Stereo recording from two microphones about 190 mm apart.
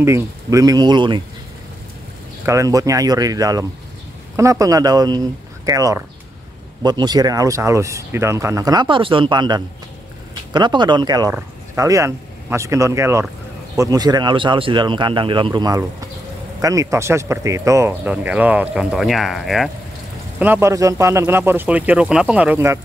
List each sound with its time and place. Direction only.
0.0 s speech: 15° right (ahead or behind)
2.4 s speech: 15° right (ahead or behind)